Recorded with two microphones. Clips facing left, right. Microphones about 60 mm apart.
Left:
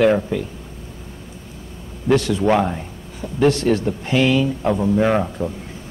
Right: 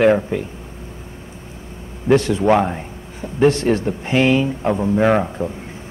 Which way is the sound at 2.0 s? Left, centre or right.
Right.